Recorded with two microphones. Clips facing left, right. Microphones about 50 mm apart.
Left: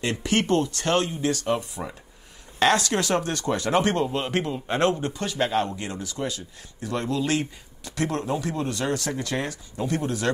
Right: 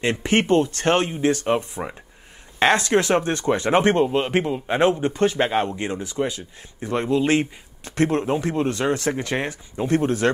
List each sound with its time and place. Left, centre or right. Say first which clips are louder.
0.0 s speech: right 4 dB; right
5.1 s speech: right 5 dB; right